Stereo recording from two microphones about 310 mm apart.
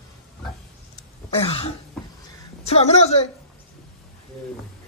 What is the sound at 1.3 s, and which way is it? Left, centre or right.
Throat clearing, centre.